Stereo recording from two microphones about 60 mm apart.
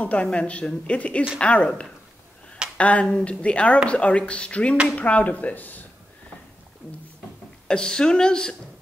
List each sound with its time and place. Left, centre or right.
0.0 s speech: left
7.6 s a woman's voice: centre